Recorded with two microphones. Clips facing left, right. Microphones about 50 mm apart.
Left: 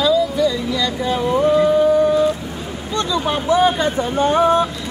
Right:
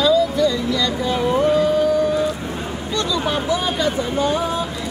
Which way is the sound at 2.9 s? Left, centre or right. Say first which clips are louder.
Left 2 dB; left.